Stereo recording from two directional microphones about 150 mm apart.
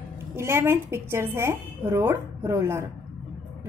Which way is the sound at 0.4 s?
15° right (ahead or behind).